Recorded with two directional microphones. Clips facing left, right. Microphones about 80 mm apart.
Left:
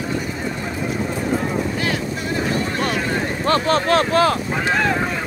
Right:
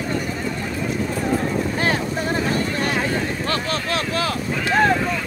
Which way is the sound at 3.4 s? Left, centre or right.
Left.